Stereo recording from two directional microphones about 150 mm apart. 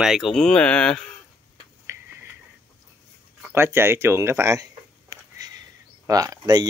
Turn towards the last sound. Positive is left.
turn(degrees=-25)  # may be behind; listen again after turning